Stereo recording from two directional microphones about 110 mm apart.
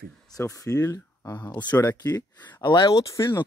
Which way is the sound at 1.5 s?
40° left (ahead or behind).